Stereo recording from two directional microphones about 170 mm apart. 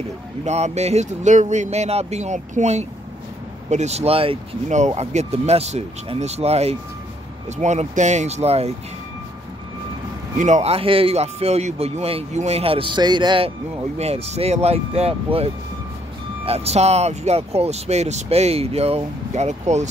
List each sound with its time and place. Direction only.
0.5 s speech: 40° right (ahead or behind)
10.3 s speech: 45° right (ahead or behind); by 13.5 s 25° right (ahead or behind)
13.9 s speech: 40° right (ahead or behind)